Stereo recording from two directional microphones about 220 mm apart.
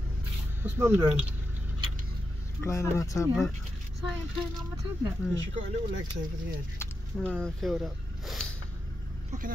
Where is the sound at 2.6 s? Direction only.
15° left (ahead or behind).